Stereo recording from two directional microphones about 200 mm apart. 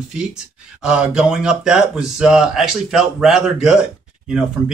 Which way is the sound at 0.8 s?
5° right (ahead or behind).